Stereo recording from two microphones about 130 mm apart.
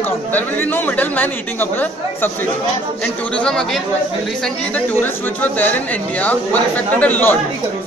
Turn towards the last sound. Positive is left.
turn(degrees=10)  # may be behind; listen again after turning